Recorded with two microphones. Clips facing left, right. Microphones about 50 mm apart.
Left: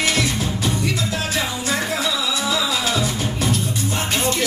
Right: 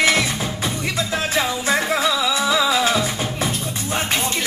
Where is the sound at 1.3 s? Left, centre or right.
Right.